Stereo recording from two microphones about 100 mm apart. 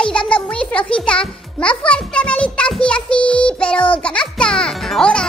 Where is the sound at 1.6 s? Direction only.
10° left (ahead or behind).